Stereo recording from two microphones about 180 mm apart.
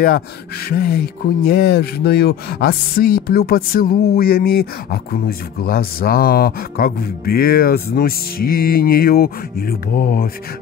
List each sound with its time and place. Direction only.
0.7 s speech: 60° left (ahead or behind)